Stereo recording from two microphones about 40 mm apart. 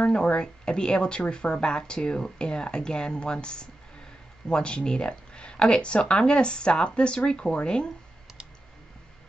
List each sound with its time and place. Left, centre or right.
0.0 s speech: left